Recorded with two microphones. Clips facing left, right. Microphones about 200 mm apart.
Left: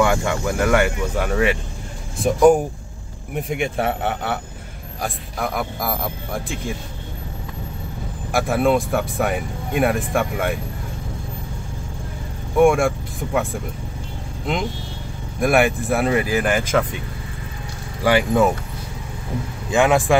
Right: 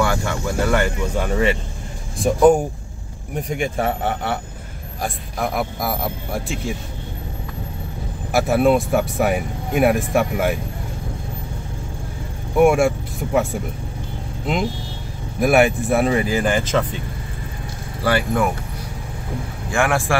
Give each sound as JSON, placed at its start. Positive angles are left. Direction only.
{"t": 0.0, "sound": "speech", "side_deg": 15}
{"t": 8.3, "sound": "speech", "side_deg": 0}
{"t": 12.5, "sound": "speech", "side_deg": 0}
{"t": 18.0, "sound": "speech", "side_deg": 15}
{"t": 19.7, "sound": "speech", "side_deg": 20}